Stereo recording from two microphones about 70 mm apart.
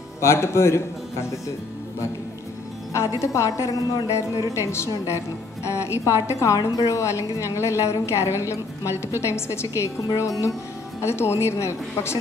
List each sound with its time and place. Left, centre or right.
0.2 s a man's voice: left
2.9 s a woman's voice: left
7.0 s a woman's voice: left
11.0 s a man's voice: left